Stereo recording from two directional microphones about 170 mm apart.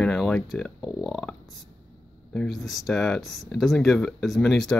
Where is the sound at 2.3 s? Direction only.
Centre (ahead or behind).